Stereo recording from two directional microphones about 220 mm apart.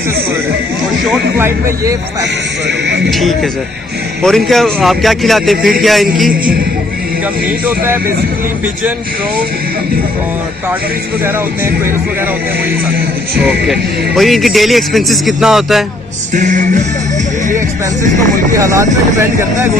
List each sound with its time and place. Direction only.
1.0 s speech: 5° right (ahead or behind)
3.1 s speech: centre (ahead or behind)
7.6 s speech: 10° right (ahead or behind)
13.4 s speech: centre (ahead or behind)
16.3 s music: 35° right (ahead or behind)
18.5 s speech: 15° right (ahead or behind)